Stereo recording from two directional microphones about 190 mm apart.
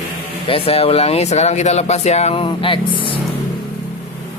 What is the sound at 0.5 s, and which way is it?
Speech, 30° left (ahead or behind).